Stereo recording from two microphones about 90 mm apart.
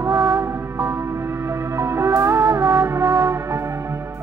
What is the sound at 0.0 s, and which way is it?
Music, 30° right (ahead or behind).